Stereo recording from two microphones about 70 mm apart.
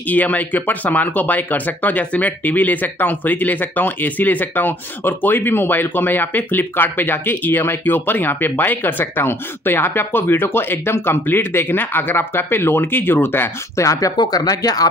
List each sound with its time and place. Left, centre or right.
0.1 s speech: left
13.7 s speech: left
14.1 s speech: left